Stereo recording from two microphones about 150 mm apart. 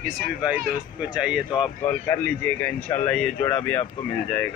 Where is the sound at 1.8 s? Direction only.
15° left (ahead or behind).